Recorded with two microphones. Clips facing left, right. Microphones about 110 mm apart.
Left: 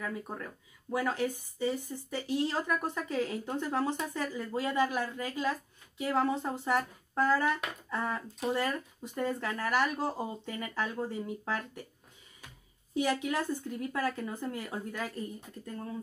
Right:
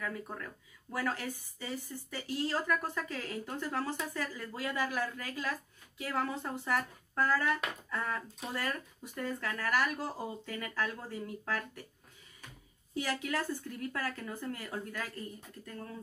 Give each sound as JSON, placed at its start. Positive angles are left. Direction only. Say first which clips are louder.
{"t": 0.0, "sound": "speech", "louder": "left 2 dB", "side_deg": 20}
{"t": 12.9, "sound": "speech", "louder": "left 4 dB", "side_deg": 20}